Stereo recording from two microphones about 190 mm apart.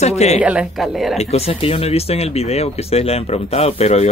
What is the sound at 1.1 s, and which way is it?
Speech, 30° left (ahead or behind).